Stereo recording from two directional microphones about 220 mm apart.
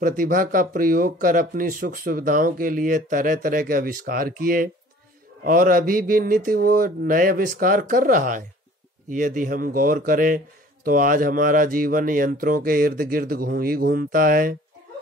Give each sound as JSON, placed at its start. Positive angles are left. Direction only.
{"t": 0.0, "sound": "a man's voice", "side_deg": -40}